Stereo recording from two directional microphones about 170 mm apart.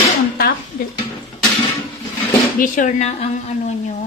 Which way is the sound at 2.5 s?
50° left (ahead or behind).